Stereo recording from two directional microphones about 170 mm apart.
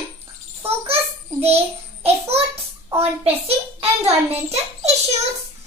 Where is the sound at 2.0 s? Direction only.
35° right (ahead or behind).